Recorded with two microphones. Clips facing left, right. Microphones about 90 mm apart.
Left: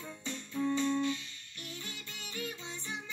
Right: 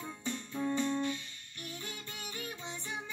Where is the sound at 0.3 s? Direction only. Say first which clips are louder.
Left 2 dB; 20° right (ahead or behind).